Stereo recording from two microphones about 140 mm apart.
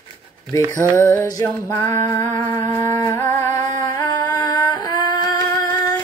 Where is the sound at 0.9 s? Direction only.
20° left (ahead or behind).